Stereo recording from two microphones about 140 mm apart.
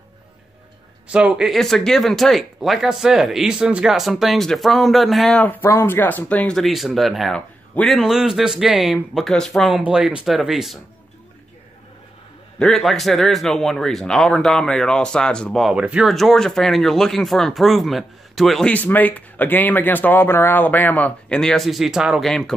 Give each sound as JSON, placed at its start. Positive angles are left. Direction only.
{"t": 1.0, "sound": "a man's voice", "side_deg": -10}
{"t": 12.5, "sound": "a man's voice", "side_deg": 0}